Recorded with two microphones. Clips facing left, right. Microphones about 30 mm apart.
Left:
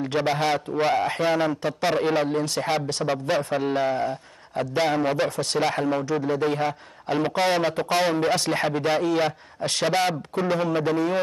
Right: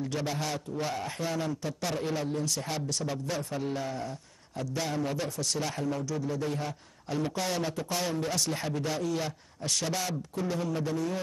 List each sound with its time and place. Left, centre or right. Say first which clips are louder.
0.0 s a man's voice: left 9 dB; left